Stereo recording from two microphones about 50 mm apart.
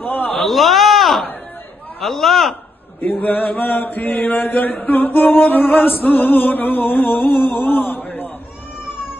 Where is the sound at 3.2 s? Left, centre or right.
Left.